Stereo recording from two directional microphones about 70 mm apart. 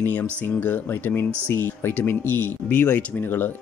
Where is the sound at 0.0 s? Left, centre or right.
Left.